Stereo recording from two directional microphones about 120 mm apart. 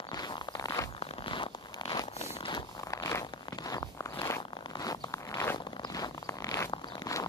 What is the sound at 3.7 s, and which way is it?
Zipper, 30° left (ahead or behind).